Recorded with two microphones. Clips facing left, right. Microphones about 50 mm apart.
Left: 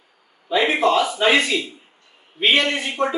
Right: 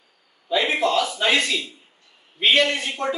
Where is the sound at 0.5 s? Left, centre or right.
Centre.